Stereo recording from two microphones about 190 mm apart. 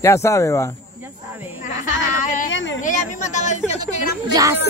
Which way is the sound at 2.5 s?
80° left.